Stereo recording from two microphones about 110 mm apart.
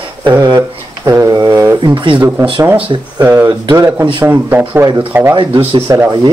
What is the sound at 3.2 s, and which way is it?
Speech, 20° right (ahead or behind).